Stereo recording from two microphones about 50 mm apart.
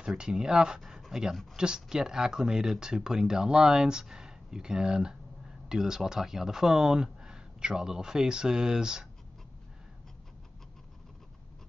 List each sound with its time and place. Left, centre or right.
0.2 s speech: centre